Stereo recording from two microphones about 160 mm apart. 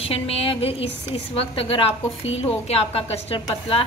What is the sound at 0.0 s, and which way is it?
A woman's voice, 35° left (ahead or behind).